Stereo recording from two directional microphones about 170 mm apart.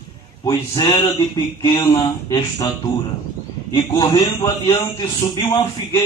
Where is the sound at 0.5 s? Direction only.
20° left (ahead or behind).